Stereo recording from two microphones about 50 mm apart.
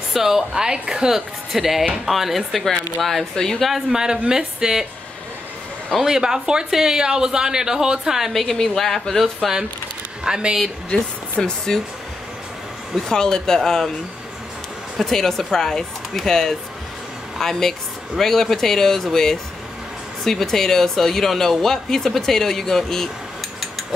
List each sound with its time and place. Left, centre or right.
0.1 s speech: centre
3.7 s speech: centre
6.0 s speech: centre
8.3 s speech: centre
9.4 s speech: centre
10.9 s speech: centre
13.1 s speech: centre
15.0 s speech: centre
20.2 s speech: centre